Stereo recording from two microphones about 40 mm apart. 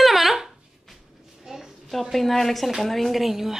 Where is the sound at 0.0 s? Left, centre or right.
Centre.